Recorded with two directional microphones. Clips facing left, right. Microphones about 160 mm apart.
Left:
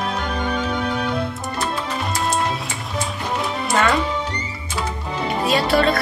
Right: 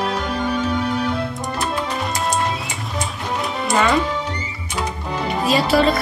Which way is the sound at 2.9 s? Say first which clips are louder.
Left 1 dB; centre (ahead or behind).